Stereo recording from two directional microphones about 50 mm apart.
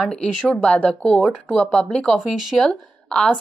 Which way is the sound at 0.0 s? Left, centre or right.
Centre.